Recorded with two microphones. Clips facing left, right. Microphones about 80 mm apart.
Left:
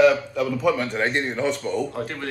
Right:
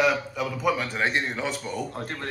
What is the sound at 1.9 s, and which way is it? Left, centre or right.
Speech, right.